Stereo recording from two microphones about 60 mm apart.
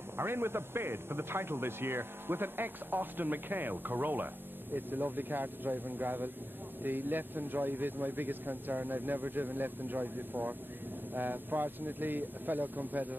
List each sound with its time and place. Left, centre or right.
0.2 s speech: right